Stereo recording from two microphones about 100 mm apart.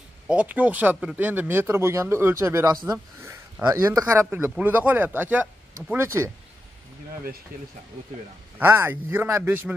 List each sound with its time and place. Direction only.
0.3 s speech: 15° right (ahead or behind)
8.5 s speech: 20° right (ahead or behind)